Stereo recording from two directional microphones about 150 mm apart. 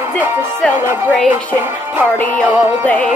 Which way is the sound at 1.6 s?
15° right (ahead or behind).